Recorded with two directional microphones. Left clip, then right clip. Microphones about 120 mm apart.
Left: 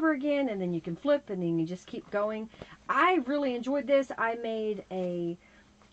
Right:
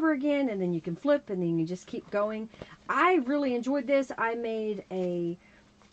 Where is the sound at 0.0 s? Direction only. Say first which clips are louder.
Right 1 dB; 45° right (ahead or behind).